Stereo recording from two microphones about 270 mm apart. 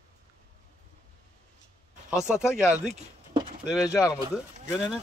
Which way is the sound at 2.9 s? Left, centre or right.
Centre.